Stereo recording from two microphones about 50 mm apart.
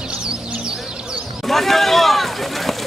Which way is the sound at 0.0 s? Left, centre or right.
Centre.